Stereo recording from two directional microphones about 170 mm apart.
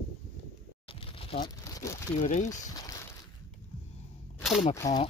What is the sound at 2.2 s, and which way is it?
Speech, 45° left (ahead or behind).